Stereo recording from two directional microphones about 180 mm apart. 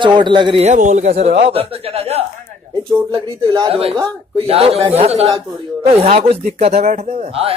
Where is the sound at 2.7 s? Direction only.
15° right (ahead or behind).